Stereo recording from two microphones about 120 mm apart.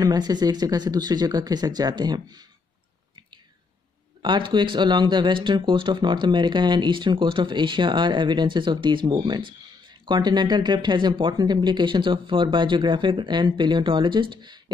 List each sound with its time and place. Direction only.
0.0 s speech: 35° right (ahead or behind)
4.2 s speech: 40° right (ahead or behind)